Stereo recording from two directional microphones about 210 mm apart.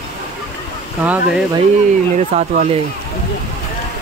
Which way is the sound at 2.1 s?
30° right (ahead or behind).